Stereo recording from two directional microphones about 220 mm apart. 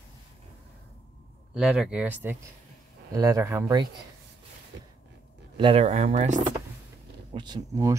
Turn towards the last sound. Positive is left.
turn(degrees=-15)  # may be behind; listen again after turning